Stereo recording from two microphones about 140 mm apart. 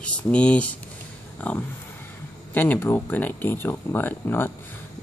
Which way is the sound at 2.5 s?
15° left (ahead or behind).